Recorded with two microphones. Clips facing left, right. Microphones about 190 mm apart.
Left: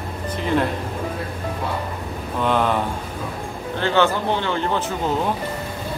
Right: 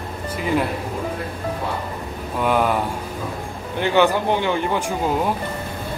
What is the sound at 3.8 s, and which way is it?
Speech, 15° right (ahead or behind).